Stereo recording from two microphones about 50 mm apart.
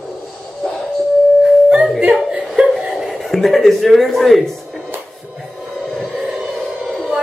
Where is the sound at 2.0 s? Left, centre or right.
Right.